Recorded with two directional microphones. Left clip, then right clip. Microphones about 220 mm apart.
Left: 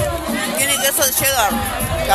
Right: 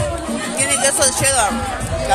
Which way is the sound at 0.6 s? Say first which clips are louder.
Right 2 dB; centre (ahead or behind).